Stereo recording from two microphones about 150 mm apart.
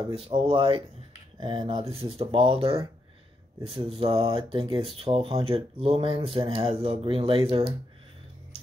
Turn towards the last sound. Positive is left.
turn(degrees=-40)  # may be behind; listen again after turning